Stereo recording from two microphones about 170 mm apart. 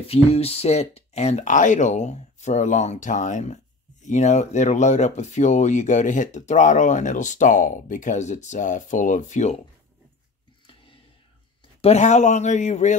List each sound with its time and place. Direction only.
0.0 s speech: 35° left (ahead or behind)
11.8 s speech: 40° left (ahead or behind)